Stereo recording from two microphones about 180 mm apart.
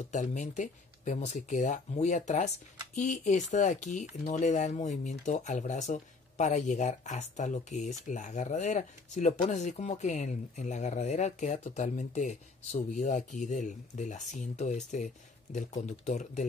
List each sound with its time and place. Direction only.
0.1 s speech: 40° left (ahead or behind)